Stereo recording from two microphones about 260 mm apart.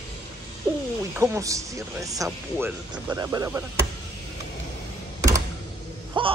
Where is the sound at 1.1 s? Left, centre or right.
Centre.